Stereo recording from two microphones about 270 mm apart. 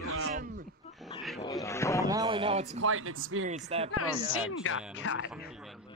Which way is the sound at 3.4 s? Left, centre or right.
Right.